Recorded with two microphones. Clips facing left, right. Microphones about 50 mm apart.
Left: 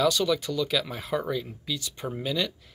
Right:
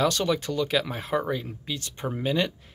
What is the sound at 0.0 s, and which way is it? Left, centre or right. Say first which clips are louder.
Speech: even; right.